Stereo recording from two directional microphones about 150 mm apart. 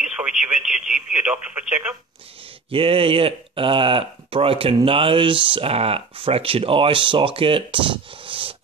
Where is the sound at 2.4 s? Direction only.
35° right (ahead or behind).